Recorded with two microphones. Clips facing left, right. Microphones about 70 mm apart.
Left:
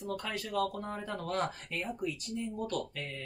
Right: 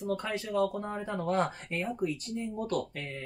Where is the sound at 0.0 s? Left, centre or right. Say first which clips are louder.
Right 4 dB; right.